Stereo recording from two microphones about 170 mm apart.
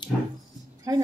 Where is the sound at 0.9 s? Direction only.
20° right (ahead or behind).